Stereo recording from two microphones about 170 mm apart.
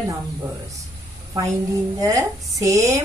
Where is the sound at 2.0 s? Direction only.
20° right (ahead or behind).